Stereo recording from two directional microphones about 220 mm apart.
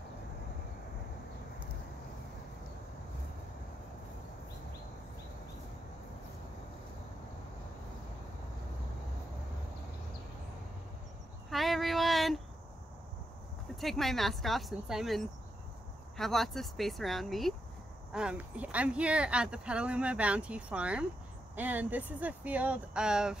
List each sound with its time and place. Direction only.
11.5 s female singing: centre (ahead or behind)
13.7 s speech: centre (ahead or behind)